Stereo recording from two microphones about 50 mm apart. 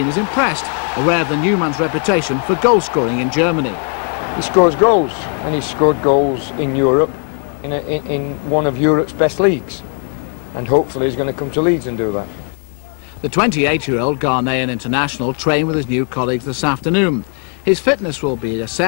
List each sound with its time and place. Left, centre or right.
0.0 s speech: centre
13.2 s speech: centre